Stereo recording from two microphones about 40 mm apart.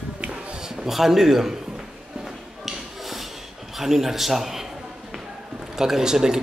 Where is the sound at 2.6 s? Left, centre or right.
Centre.